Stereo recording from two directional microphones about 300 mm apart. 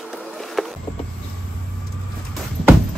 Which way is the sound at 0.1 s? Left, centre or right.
Centre.